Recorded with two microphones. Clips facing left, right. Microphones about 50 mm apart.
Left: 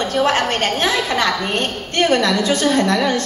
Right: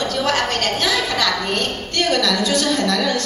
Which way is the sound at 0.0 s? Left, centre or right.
Left.